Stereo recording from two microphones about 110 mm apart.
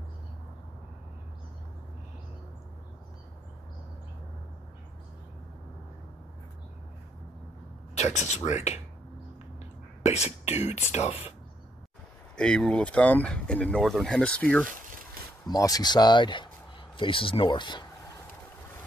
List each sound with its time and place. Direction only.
7.9 s speech: 90° left
10.0 s speech: 80° left
10.9 s speech: 75° left (ahead or behind)
12.4 s speech: 10° left (ahead or behind)
15.4 s speech: 35° left (ahead or behind)